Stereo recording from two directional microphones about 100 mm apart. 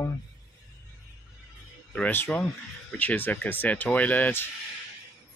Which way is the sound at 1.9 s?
20° left (ahead or behind).